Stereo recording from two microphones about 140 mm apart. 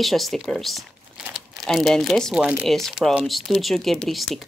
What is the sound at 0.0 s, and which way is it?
Speech, centre (ahead or behind).